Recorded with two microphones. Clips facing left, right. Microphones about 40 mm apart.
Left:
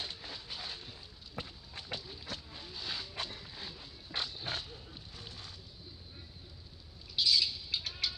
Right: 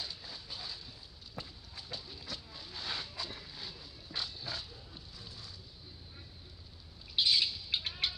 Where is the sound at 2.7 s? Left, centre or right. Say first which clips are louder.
Right 1 dB; right.